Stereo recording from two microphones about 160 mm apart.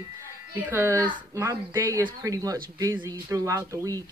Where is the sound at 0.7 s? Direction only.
15° right (ahead or behind).